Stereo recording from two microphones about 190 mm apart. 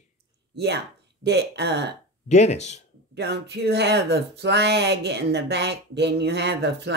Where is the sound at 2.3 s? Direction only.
35° left (ahead or behind).